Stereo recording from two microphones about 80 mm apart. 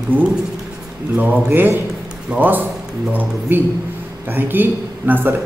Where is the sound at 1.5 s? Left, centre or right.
Right.